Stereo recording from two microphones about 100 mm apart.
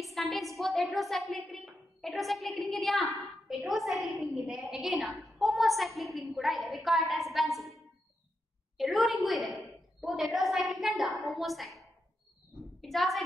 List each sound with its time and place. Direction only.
0.0 s a woman's voice: centre (ahead or behind)